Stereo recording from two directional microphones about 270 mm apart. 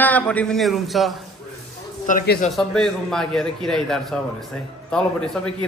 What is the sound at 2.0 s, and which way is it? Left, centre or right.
Speech, left.